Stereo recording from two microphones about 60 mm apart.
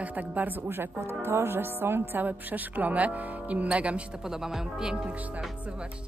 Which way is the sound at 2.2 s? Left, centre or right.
Right.